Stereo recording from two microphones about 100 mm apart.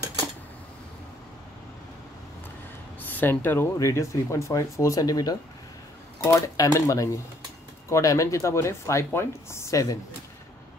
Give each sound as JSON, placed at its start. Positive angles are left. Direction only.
{"t": 3.0, "sound": "speech", "side_deg": 20}